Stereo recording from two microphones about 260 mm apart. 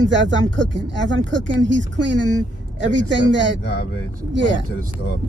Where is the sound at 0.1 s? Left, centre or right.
Right.